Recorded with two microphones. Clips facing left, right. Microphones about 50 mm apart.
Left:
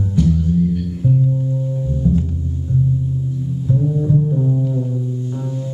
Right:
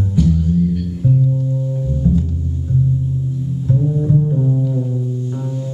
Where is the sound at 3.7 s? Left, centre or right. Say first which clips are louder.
Right 1 dB; centre.